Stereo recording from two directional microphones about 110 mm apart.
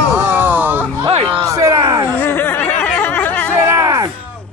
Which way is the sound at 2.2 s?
20° left (ahead or behind).